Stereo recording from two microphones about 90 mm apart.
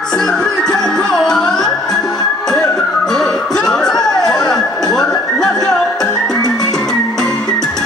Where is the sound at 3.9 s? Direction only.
5° left (ahead or behind).